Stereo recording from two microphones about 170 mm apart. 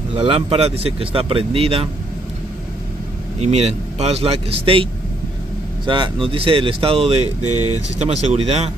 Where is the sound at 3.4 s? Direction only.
40° right (ahead or behind).